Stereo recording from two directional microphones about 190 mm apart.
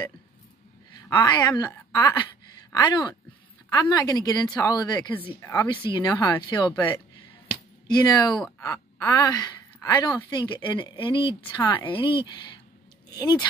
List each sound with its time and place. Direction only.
1.1 s speech: 20° left (ahead or behind)
7.9 s speech: 20° left (ahead or behind)